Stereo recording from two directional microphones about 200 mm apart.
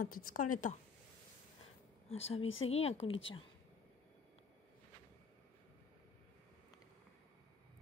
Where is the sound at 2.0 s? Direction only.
30° left (ahead or behind).